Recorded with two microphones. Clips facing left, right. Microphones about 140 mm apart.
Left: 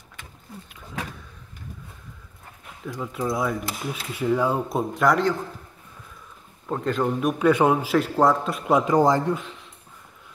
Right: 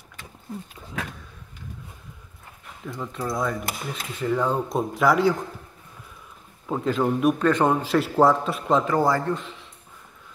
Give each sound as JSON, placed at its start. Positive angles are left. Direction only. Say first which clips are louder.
{"t": 2.9, "sound": "speech", "louder": "left 2 dB", "side_deg": 5}
{"t": 6.7, "sound": "a man's voice", "louder": "right 1 dB", "side_deg": 0}
{"t": 7.3, "sound": "a man's voice", "louder": "left 2 dB", "side_deg": 10}
{"t": 8.7, "sound": "speech", "louder": "left 3 dB", "side_deg": 15}
{"t": 9.3, "sound": "a man's voice", "louder": "left 1 dB", "side_deg": 0}